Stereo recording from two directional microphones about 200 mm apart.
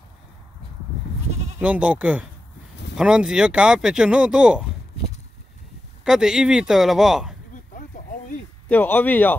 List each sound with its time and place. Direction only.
1.6 s speech: 5° right (ahead or behind)
6.0 s speech: 5° right (ahead or behind)
7.5 s a sound: 40° left (ahead or behind)
8.6 s speech: 10° left (ahead or behind)